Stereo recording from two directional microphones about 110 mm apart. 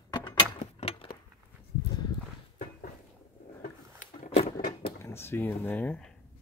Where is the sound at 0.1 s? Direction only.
45° left (ahead or behind).